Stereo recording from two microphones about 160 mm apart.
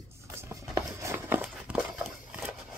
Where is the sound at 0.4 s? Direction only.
20° right (ahead or behind).